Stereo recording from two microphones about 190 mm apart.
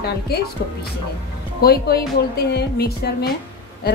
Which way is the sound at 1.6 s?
55° left (ahead or behind).